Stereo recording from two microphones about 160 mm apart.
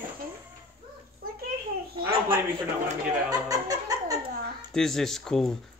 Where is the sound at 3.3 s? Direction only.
20° right (ahead or behind).